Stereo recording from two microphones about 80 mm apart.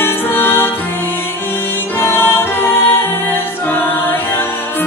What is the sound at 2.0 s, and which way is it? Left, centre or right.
Music, left.